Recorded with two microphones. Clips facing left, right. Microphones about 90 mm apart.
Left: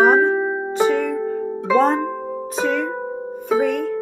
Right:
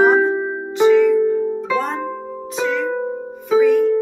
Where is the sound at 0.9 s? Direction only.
35° left (ahead or behind).